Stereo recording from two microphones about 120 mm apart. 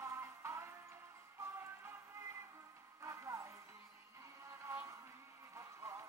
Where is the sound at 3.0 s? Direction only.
25° right (ahead or behind).